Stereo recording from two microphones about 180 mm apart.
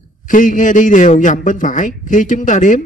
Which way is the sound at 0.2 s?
45° left (ahead or behind).